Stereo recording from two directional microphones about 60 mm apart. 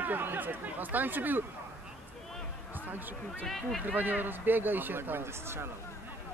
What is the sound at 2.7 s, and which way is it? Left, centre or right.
Speech, right.